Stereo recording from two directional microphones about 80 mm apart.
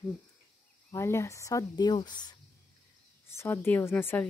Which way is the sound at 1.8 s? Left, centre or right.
Left.